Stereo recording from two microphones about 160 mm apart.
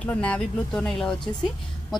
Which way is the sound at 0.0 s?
5° left (ahead or behind).